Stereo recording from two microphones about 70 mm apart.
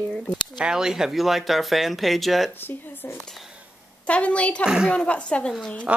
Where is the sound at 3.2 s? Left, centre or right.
Centre.